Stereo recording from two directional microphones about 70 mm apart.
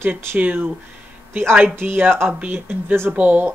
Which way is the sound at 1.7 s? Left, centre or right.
Right.